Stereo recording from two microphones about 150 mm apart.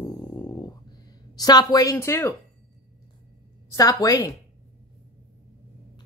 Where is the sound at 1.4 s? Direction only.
25° left (ahead or behind).